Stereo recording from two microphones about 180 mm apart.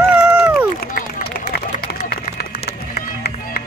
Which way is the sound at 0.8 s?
50° left (ahead or behind).